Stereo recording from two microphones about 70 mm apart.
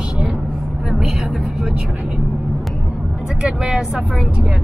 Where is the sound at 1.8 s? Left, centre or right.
Centre.